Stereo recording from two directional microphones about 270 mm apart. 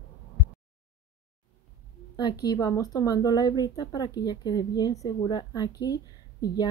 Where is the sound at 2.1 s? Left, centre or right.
Centre.